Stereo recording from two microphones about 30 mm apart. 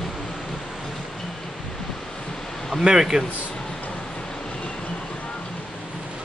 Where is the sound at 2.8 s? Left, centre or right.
Right.